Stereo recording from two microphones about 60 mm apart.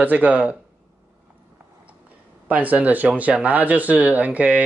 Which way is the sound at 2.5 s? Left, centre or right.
Right.